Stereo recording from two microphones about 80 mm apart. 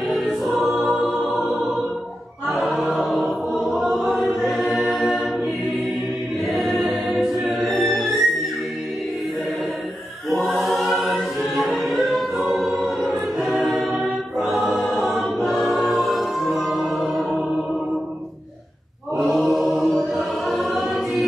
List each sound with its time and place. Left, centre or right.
0.4 s choir: centre
1.0 s music: centre
2.4 s choir: centre
2.7 s chant: centre
3.0 s chant: centre
3.5 s choir: centre
6.5 s music: centre
10.3 s choir: centre
16.2 s music: centre
19.3 s chant: centre
20.0 s choir: centre